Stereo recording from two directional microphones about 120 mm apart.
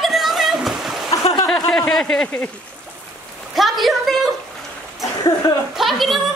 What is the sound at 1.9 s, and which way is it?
Speech, 5° left (ahead or behind).